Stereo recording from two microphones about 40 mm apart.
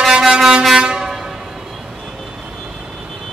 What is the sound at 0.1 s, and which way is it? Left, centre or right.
Air horn, centre.